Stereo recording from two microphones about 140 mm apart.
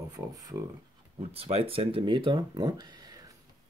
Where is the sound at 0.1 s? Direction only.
25° right (ahead or behind).